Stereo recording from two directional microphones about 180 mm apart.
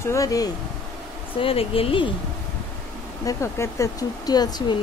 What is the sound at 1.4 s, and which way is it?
Speech, 30° left (ahead or behind).